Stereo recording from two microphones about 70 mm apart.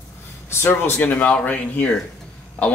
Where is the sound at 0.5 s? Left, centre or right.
Left.